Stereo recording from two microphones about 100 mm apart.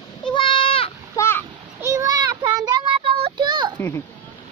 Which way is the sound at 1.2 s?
25° left (ahead or behind).